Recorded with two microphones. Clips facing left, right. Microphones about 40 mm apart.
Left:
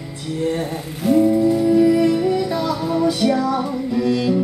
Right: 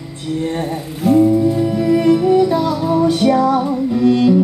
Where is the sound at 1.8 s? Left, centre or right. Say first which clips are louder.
Right 2 dB; right.